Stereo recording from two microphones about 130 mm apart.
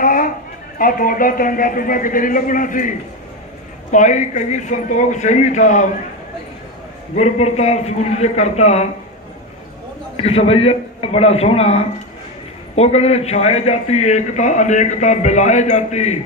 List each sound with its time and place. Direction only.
0.0 s a sound: 90° left
0.7 s speech: 90° left
3.9 s a man's voice: 70° left (ahead or behind)
7.2 s a man's voice: 55° left (ahead or behind)
10.1 s a man's voice: 50° left (ahead or behind)